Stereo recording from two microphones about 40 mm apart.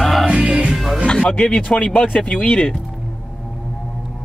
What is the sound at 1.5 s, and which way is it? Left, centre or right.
Speech, left.